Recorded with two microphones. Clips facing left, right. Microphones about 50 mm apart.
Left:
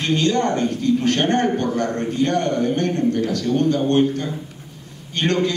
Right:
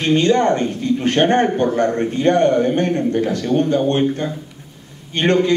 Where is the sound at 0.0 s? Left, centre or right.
Right.